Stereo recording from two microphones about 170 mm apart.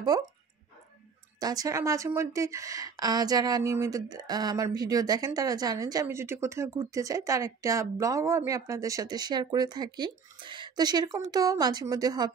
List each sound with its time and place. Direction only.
0.1 s a woman's voice: 25° right (ahead or behind)
1.4 s a woman's voice: 20° right (ahead or behind)